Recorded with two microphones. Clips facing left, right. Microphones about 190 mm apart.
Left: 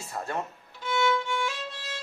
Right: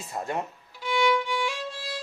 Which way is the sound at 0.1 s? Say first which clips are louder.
Right 2 dB; 15° right (ahead or behind).